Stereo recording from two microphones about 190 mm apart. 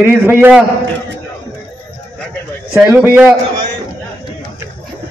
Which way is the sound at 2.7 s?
5° right (ahead or behind).